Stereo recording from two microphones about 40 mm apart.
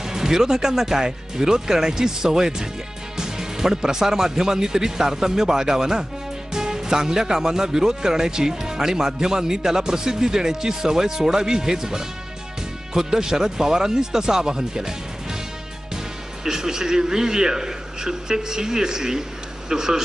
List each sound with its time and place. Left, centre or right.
0.0 s speech: centre
16.4 s speech: centre